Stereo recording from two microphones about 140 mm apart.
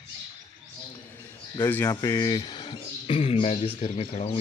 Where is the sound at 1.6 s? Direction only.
15° left (ahead or behind).